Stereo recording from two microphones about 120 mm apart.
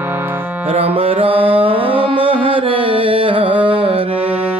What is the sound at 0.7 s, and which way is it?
Music, 55° right (ahead or behind).